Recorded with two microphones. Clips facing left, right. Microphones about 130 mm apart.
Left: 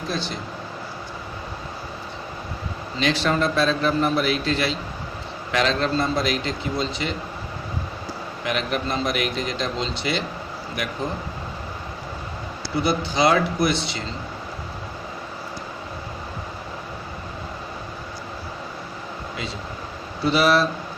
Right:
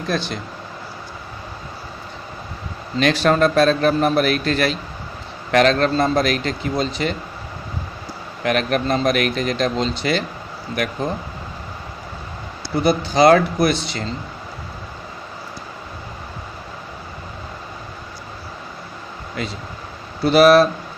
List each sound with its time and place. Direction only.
3.0 s a man's voice: 50° right (ahead or behind)
8.5 s a man's voice: 55° right (ahead or behind)
12.8 s a man's voice: 50° right (ahead or behind)
20.2 s speech: 55° right (ahead or behind)